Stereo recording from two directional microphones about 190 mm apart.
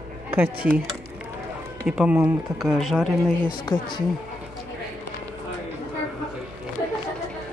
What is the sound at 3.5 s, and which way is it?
Speech, 25° left (ahead or behind).